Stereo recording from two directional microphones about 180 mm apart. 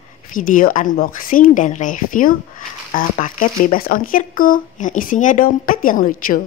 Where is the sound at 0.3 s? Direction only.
50° left (ahead or behind).